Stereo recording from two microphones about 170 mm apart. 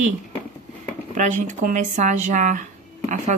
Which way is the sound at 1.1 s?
45° right (ahead or behind).